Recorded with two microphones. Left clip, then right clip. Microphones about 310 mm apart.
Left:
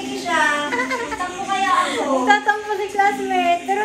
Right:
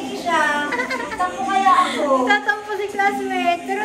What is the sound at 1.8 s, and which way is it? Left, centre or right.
A woman's voice, centre.